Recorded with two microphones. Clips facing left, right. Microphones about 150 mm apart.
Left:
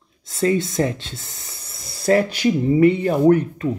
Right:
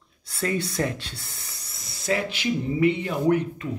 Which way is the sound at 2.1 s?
40° left (ahead or behind).